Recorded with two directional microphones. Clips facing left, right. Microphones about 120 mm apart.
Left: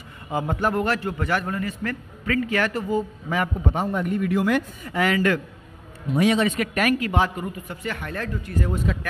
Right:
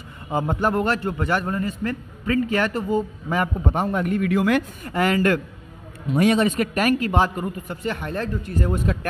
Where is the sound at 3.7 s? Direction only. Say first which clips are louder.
Right 3 dB; 65° right (ahead or behind); by 4.6 s 90° right.